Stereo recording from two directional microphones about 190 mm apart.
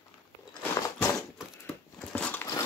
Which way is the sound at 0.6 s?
15° left (ahead or behind).